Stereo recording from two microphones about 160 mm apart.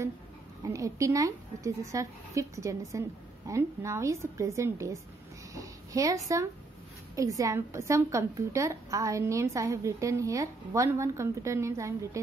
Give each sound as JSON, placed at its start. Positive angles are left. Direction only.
{"t": 0.6, "sound": "a woman's voice", "side_deg": -20}